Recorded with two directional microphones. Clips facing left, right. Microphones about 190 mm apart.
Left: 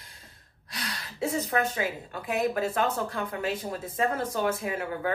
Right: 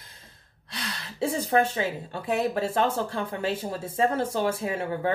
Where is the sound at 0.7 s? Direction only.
30° right (ahead or behind).